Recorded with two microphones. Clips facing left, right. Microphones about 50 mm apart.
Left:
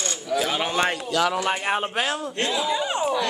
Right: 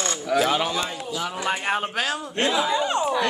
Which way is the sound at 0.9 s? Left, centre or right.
Left.